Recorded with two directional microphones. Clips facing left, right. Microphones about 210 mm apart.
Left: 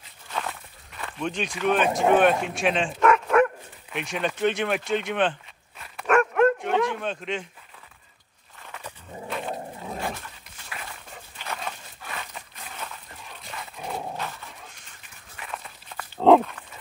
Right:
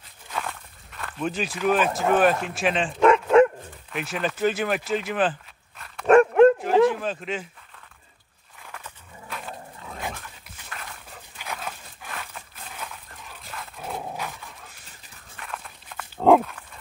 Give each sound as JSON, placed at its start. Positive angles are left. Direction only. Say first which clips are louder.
{"t": 0.3, "sound": "walk", "louder": "even", "side_deg": 5}
{"t": 2.4, "sound": "speech", "louder": "even", "side_deg": 0}
{"t": 3.0, "sound": "dog", "louder": "right 5 dB", "side_deg": -25}
{"t": 3.9, "sound": "speech", "louder": "even", "side_deg": 0}
{"t": 6.0, "sound": "dog", "louder": "right 6 dB", "side_deg": -30}
{"t": 6.6, "sound": "a sound", "louder": "right 5 dB", "side_deg": 0}
{"t": 10.6, "sound": "dog", "louder": "left 1 dB", "side_deg": 5}
{"t": 11.3, "sound": "a sound", "louder": "even", "side_deg": -5}
{"t": 14.1, "sound": "dog", "louder": "even", "side_deg": -10}